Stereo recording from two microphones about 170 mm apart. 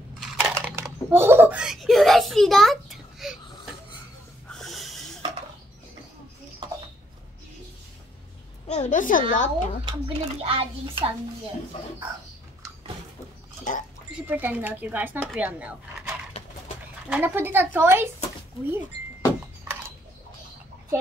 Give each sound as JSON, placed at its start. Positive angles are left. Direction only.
{"t": 0.2, "sound": "crushing", "side_deg": 0}
{"t": 0.7, "sound": "a child's voice", "side_deg": -15}
{"t": 4.5, "sound": "wheeze", "side_deg": 0}
{"t": 8.6, "sound": "a woman's voice", "side_deg": 40}
{"t": 9.8, "sound": "a child's voice", "side_deg": -30}
{"t": 13.7, "sound": "a woman's voice", "side_deg": 45}
{"t": 14.1, "sound": "speech", "side_deg": -10}